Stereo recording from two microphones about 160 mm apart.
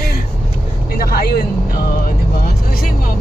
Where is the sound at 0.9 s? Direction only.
70° left (ahead or behind).